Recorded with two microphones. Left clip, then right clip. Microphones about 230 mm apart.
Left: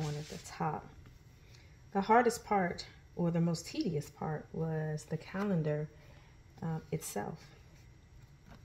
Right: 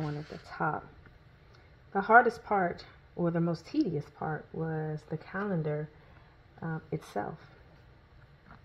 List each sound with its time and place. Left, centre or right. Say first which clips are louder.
0.5 s speech: right 5 dB; right
1.9 s speech: right 5 dB; right